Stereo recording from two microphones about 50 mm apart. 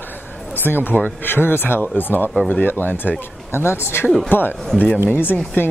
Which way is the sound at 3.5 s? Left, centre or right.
Left.